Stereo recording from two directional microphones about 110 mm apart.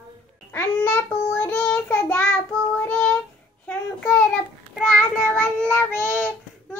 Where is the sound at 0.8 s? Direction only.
15° left (ahead or behind).